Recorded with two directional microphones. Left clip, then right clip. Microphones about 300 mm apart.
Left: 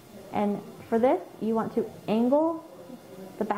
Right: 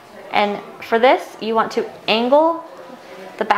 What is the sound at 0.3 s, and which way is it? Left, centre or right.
A woman's voice, centre.